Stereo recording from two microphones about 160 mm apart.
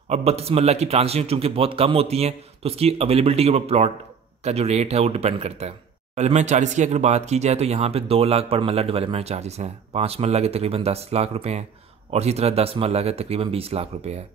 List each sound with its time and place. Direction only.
0.1 s a man's voice: 40° right (ahead or behind)